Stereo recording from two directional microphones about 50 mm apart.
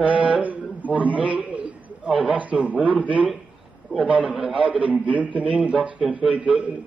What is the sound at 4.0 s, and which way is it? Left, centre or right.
A man's voice, right.